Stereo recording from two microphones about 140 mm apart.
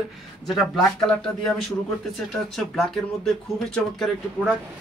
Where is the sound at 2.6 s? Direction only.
5° left (ahead or behind).